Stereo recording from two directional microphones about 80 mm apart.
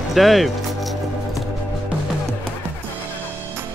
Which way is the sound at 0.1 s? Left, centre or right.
Centre.